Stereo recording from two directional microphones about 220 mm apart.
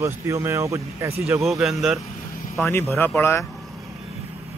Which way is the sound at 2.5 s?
10° left (ahead or behind).